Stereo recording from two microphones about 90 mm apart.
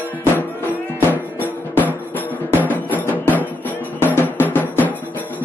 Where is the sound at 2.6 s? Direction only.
20° left (ahead or behind).